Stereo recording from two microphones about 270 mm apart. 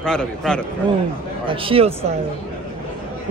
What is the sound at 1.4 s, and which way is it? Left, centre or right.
Speech, centre.